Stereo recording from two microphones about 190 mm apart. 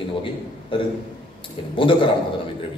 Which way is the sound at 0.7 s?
25° left (ahead or behind).